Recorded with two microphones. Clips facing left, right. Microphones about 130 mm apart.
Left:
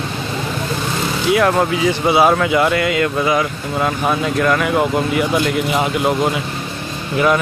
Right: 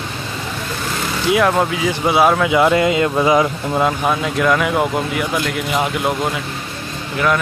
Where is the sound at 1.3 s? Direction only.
Centre (ahead or behind).